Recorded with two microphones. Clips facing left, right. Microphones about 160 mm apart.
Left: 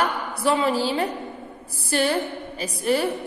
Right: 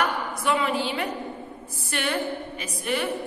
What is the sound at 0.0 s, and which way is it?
A woman's voice, 30° left (ahead or behind).